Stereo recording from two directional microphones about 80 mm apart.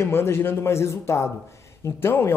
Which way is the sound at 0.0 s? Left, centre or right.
Left.